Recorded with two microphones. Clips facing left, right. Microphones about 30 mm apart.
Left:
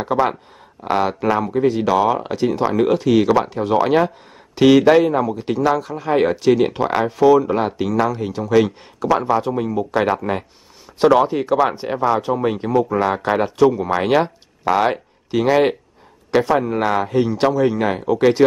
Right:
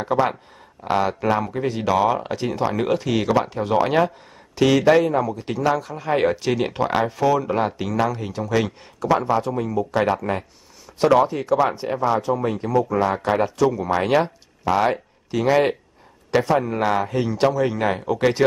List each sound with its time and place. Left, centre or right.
0.0 s speech: centre
4.6 s speech: centre